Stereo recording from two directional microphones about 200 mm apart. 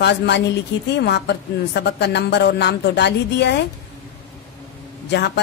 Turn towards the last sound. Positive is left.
turn(degrees=60)  # may be behind; listen again after turning